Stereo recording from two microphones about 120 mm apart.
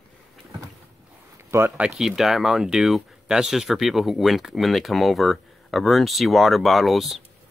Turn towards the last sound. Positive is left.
turn(degrees=0)  # may be behind; listen again after turning